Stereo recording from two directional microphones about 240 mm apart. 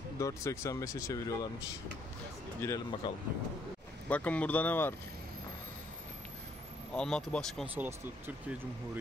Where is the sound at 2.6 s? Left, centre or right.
Centre.